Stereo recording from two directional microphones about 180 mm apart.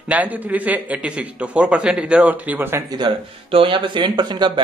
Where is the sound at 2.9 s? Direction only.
30° right (ahead or behind).